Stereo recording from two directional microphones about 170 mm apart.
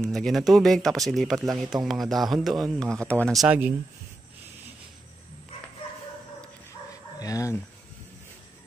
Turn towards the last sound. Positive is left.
turn(degrees=20)  # may be behind; listen again after turning